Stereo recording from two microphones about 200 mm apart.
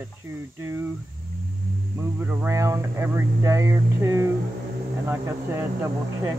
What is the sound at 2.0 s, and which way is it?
Speech, 10° right (ahead or behind).